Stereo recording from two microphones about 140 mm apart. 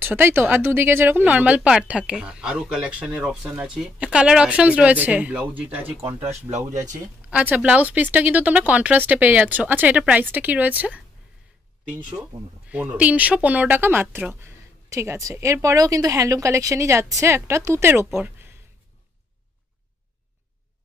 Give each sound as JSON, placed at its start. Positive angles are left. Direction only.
{"t": 0.0, "sound": "speech", "side_deg": -15}
{"t": 6.5, "sound": "speech", "side_deg": -60}
{"t": 7.2, "sound": "speech", "side_deg": -10}
{"t": 12.1, "sound": "speech", "side_deg": -10}